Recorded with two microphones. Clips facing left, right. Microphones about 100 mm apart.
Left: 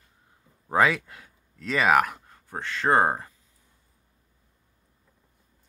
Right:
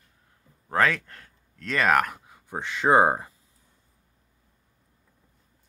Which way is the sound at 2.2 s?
10° right (ahead or behind).